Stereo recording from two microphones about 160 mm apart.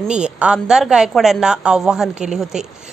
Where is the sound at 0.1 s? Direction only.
5° right (ahead or behind).